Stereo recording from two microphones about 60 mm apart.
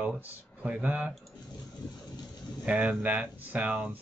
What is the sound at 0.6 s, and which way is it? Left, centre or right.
Speech, right.